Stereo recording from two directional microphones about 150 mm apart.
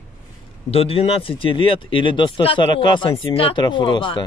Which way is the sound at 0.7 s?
40° left (ahead or behind).